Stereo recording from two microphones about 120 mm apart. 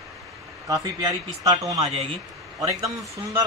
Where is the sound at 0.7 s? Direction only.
30° right (ahead or behind).